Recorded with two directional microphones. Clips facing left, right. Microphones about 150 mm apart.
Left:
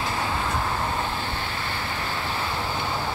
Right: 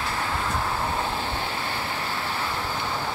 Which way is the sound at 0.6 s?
Centre (ahead or behind).